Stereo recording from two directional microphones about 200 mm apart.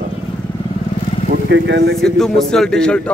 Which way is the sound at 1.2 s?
45° right (ahead or behind).